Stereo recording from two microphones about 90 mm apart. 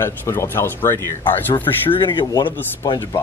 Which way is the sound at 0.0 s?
30° left (ahead or behind).